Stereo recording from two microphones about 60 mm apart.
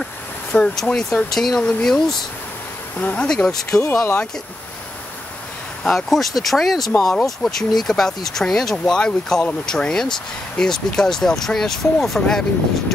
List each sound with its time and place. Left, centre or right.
0.0 s a sound: centre
1.3 s speech: centre
3.0 s speech: left
3.4 s speech: centre
3.8 s speech: left
5.9 s speech: centre